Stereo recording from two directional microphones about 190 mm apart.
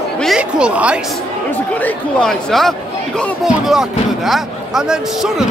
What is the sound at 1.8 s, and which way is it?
A man's voice, 5° left (ahead or behind).